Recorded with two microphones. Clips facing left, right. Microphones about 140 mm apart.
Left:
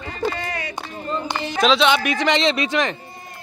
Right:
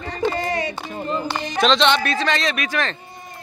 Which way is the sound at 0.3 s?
35° right (ahead or behind).